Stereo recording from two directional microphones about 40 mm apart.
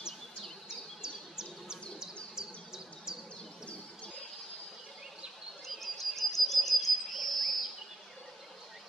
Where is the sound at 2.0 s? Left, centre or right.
Centre.